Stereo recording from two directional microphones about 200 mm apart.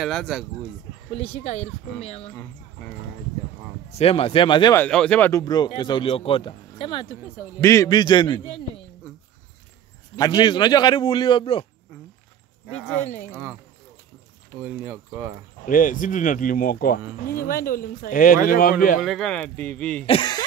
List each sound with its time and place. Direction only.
0.0 s speech: centre (ahead or behind)
1.1 s speech: 30° left (ahead or behind)
4.0 s speech: 30° left (ahead or behind)
4.7 s speech: 5° left (ahead or behind); by 8.8 s 25° left (ahead or behind)
10.1 s speech: 20° left (ahead or behind)
13.3 s speech: 5° right (ahead or behind)
14.6 s speech: 10° right (ahead or behind)
15.6 s speech: 40° left (ahead or behind)
18.9 s speech: centre (ahead or behind)
20.1 s speech: 20° left (ahead or behind)